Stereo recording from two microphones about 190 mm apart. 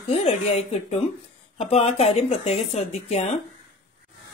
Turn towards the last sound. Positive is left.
turn(degrees=35)  # may be behind; listen again after turning